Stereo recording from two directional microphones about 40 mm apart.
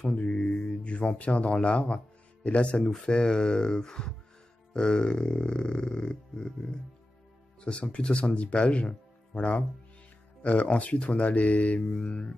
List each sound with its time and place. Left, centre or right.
0.0 s mantra: left
0.7 s speech: left
7.6 s speech: left
11.9 s speech: left